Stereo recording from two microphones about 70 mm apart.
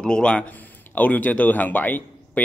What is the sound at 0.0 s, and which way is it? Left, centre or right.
A man's voice, centre.